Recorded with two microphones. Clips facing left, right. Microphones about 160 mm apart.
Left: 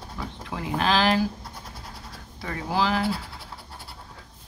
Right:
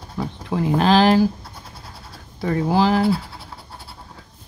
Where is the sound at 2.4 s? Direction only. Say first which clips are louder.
Right 8 dB; 35° right (ahead or behind).